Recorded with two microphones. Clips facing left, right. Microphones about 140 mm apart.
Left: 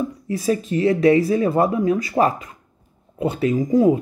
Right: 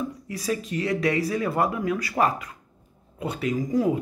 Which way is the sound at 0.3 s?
25° left (ahead or behind).